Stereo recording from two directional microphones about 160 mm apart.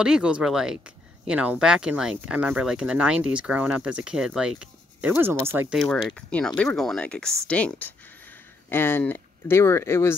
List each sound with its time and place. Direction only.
0.0 s speech: 5° right (ahead or behind)
6.1 s speech: 5° left (ahead or behind)